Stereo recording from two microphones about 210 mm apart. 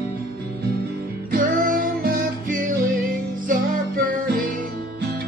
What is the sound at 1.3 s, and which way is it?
Music, 40° right (ahead or behind).